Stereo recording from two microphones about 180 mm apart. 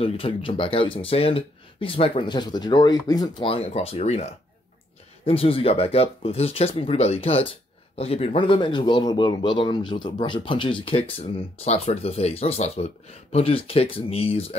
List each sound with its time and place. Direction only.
0.0 s speech: 30° left (ahead or behind)